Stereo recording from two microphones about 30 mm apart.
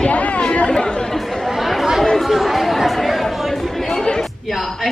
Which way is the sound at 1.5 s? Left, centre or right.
Centre.